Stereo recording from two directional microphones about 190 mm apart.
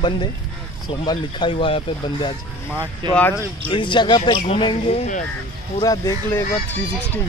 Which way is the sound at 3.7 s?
25° left (ahead or behind).